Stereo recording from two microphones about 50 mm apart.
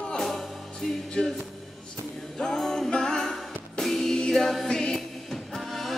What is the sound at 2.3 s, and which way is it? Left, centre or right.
Music, centre.